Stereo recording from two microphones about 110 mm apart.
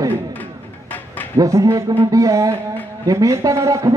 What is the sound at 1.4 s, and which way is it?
A man's voice, 30° right (ahead or behind).